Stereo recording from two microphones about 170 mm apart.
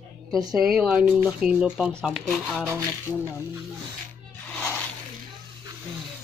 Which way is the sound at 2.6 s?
15° right (ahead or behind).